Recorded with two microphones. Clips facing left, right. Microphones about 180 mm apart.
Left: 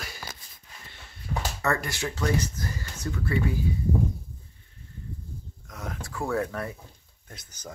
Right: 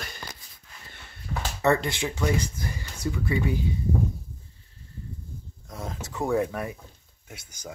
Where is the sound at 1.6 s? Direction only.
20° right (ahead or behind).